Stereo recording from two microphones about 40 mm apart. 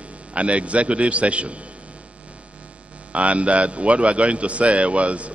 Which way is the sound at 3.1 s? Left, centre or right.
Right.